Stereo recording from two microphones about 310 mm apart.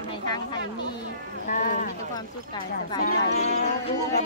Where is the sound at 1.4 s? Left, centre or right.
Left.